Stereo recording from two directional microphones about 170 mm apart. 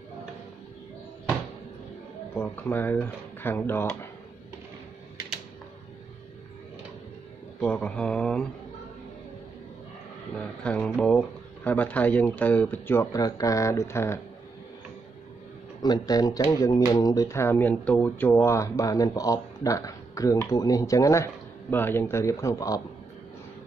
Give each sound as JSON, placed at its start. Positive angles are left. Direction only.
{"t": 2.3, "sound": "speech", "side_deg": 10}
{"t": 7.6, "sound": "mantra", "side_deg": 5}
{"t": 10.3, "sound": "speech", "side_deg": 10}
{"t": 15.8, "sound": "speech", "side_deg": 25}